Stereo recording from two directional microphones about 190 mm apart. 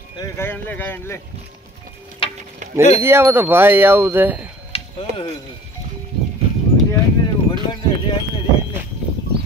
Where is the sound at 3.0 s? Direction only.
10° right (ahead or behind).